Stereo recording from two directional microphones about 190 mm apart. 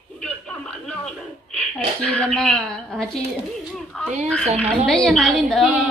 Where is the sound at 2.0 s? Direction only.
5° left (ahead or behind).